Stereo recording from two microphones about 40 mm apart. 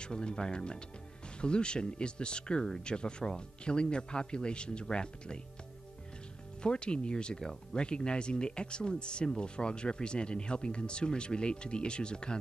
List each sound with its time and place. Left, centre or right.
0.0 s speech: left
6.6 s speech: left